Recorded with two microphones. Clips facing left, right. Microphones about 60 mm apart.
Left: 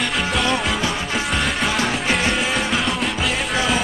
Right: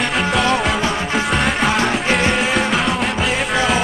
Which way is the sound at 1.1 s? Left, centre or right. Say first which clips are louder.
Right 4 dB; centre.